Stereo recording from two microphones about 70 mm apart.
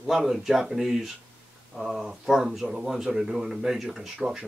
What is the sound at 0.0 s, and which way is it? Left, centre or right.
A man's voice, centre.